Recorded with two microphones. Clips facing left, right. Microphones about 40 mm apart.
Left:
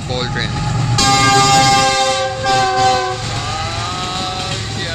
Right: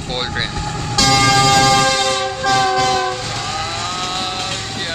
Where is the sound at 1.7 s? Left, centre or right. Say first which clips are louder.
Left 2 dB; centre.